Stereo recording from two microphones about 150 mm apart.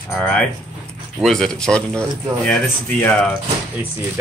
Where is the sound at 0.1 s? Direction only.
10° left (ahead or behind).